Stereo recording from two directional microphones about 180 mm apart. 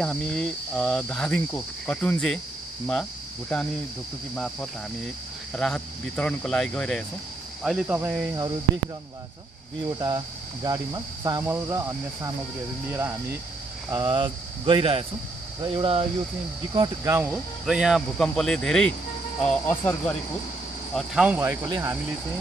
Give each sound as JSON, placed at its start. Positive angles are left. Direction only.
{"t": 0.0, "sound": "cricket", "side_deg": 0}
{"t": 2.9, "sound": "speech", "side_deg": 5}
{"t": 5.5, "sound": "cricket", "side_deg": 5}
{"t": 9.9, "sound": "cricket", "side_deg": -20}
{"t": 13.8, "sound": "cricket", "side_deg": -20}
{"t": 17.0, "sound": "cricket", "side_deg": -15}
{"t": 17.6, "sound": "cricket", "side_deg": -5}
{"t": 19.4, "sound": "speech", "side_deg": 10}
{"t": 20.9, "sound": "cricket", "side_deg": -5}